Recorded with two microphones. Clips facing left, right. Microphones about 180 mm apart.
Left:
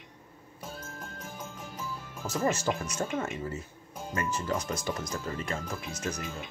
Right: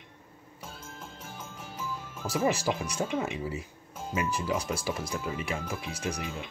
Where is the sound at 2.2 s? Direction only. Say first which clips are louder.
Right 1 dB; 10° right (ahead or behind).